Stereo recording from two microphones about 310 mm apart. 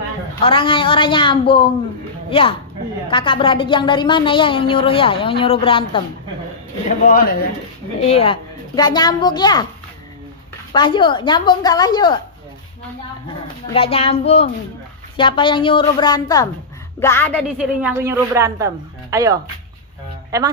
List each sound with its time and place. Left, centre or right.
0.4 s a woman's voice: centre
7.1 s a child's voice: left
10.7 s a woman's voice: centre
13.7 s a child's voice: centre